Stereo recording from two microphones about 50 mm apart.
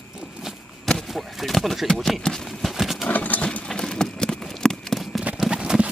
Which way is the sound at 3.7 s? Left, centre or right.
Centre.